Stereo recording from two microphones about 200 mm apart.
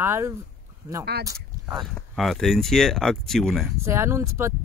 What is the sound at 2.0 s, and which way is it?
Speech, centre (ahead or behind).